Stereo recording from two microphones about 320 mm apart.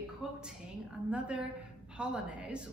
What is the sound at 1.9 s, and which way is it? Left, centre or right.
Speech, centre.